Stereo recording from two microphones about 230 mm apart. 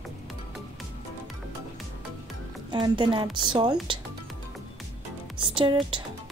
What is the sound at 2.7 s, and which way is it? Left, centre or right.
A woman's voice, centre.